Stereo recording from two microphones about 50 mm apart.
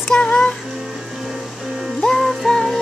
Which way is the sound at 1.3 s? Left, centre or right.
Centre.